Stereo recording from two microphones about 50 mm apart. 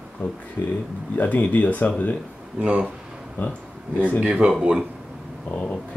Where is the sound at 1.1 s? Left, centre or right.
Left.